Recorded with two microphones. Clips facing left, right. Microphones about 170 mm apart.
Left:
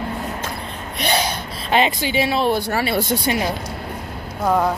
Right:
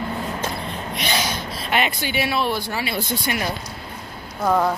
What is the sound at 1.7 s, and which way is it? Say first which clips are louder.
Speech: left 5 dB; 30° left (ahead or behind).